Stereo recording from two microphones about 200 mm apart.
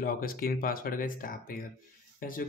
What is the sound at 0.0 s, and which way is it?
Speech, 45° left (ahead or behind).